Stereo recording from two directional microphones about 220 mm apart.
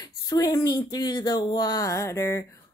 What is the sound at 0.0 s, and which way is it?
Speech, 15° left (ahead or behind).